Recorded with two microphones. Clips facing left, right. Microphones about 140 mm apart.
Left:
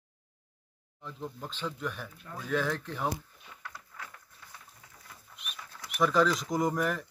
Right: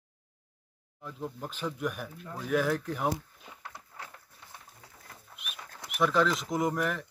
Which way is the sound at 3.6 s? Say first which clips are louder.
Even; 25° right (ahead or behind).